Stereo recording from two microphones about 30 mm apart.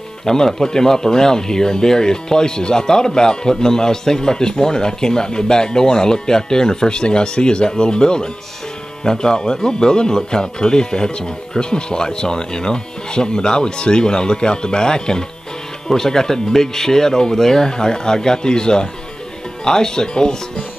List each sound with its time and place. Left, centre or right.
0.2 s speech: centre